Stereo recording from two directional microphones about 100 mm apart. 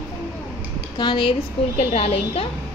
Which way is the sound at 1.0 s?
50° left (ahead or behind).